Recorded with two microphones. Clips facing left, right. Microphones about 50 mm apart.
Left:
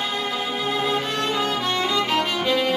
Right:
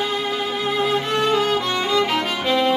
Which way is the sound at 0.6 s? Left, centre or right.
Centre.